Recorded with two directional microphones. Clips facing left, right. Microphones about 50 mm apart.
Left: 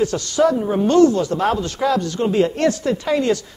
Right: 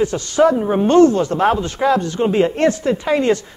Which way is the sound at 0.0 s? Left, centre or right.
Right.